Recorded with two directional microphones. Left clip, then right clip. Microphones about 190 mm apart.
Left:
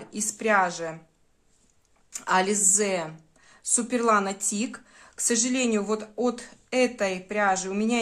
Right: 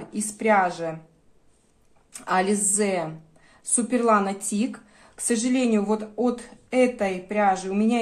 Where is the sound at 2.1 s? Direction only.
25° left (ahead or behind).